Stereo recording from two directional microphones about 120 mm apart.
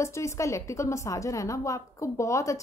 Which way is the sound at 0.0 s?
25° left (ahead or behind).